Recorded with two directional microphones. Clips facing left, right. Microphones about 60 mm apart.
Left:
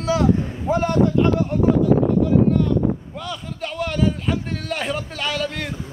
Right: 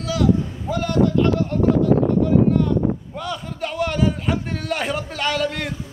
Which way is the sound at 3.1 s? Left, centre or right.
Centre.